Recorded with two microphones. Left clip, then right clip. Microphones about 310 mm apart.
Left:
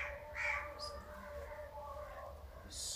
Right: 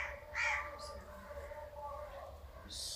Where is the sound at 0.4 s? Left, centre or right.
Centre.